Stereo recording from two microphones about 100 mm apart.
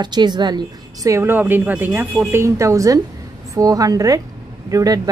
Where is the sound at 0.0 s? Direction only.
45° right (ahead or behind).